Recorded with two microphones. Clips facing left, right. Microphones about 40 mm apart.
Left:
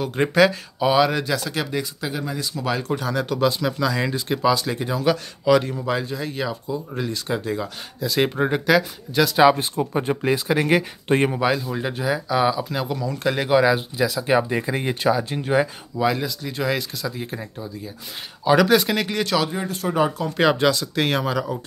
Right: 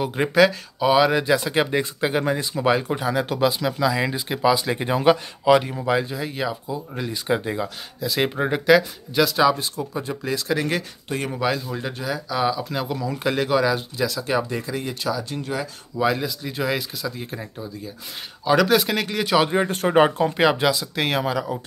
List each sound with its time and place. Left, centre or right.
0.0 s speech: centre
1.2 s speech: right
2.5 s speech: centre
4.7 s speech: right
5.1 s speech: centre
7.2 s speech: centre
7.6 s speech: centre
9.4 s speech: left
10.3 s speech: centre
13.4 s speech: centre
14.3 s speech: left
16.0 s speech: centre
19.4 s speech: right
20.3 s speech: centre